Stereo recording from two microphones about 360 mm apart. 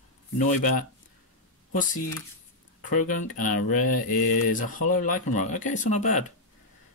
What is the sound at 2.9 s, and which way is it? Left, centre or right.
Speech, left.